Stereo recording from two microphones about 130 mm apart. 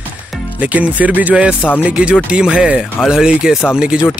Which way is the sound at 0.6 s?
10° right (ahead or behind).